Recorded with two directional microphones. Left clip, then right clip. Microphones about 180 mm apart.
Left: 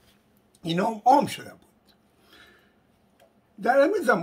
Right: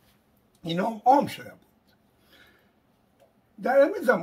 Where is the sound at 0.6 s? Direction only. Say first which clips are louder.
Left 1 dB; 15° left (ahead or behind).